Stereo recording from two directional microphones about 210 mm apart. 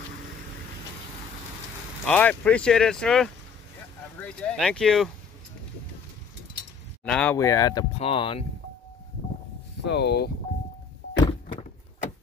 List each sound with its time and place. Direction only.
2.0 s speech: 5° left (ahead or behind)
7.1 s speech: 5° left (ahead or behind); by 8.5 s 25° left (ahead or behind)
9.8 s speech: 50° left (ahead or behind)